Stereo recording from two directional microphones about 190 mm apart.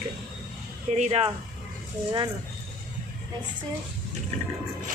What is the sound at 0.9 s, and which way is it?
Speech, 35° right (ahead or behind).